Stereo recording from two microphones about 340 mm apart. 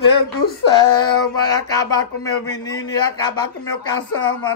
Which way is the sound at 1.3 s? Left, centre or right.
Centre.